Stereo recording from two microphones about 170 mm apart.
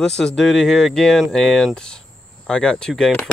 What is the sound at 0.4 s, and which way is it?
Speech, 5° left (ahead or behind).